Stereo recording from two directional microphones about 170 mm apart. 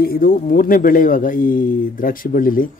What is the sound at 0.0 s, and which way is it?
Speech, 60° left (ahead or behind).